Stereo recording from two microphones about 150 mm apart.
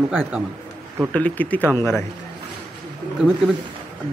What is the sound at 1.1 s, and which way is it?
Speech, 10° left (ahead or behind).